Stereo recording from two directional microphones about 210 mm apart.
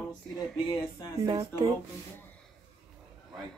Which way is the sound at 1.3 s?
20° right (ahead or behind).